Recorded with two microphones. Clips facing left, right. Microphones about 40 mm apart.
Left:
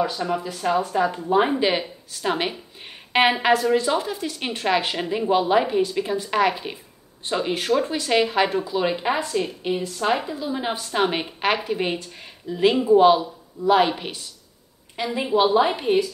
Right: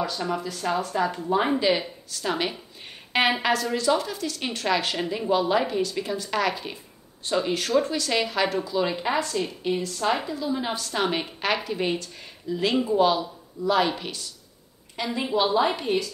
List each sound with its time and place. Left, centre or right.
0.4 s speech: centre
3.1 s a sound: left
3.7 s speech: left